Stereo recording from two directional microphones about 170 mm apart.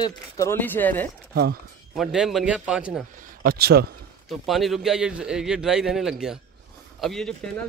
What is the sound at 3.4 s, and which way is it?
Speech, 65° right (ahead or behind).